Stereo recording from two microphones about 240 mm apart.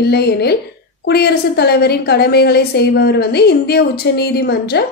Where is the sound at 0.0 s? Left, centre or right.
Left.